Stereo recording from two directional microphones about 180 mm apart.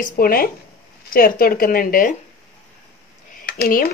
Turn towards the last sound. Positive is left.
turn(degrees=55)  # may be behind; listen again after turning